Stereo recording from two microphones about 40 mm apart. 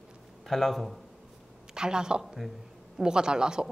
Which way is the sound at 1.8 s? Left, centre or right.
Centre.